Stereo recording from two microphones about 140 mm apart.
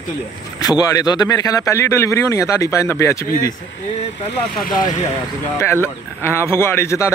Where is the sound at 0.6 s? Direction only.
25° left (ahead or behind).